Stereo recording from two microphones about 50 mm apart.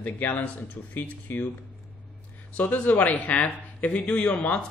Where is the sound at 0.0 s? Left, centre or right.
Left.